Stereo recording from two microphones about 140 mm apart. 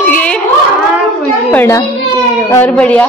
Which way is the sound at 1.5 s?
15° left (ahead or behind).